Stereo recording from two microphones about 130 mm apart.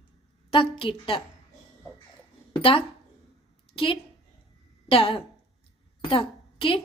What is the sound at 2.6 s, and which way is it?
A woman's voice, 45° left (ahead or behind).